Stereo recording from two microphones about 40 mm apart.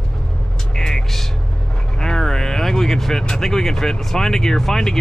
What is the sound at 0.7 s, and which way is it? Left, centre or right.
Vehicle, centre.